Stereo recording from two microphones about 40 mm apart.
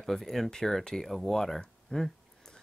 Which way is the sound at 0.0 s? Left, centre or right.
Centre.